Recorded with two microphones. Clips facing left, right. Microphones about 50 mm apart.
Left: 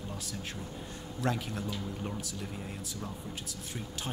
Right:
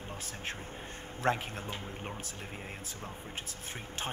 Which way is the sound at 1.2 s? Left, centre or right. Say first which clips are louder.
Right 2 dB; right.